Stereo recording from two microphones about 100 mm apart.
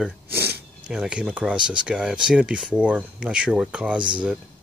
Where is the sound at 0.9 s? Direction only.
10° right (ahead or behind).